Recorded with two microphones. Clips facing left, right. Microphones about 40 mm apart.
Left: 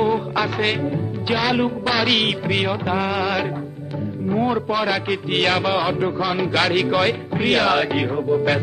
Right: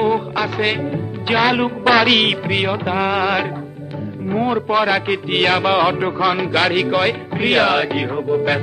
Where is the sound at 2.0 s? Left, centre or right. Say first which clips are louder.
Right 2 dB; centre.